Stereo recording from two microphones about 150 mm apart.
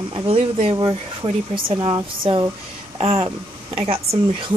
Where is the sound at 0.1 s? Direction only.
40° right (ahead or behind).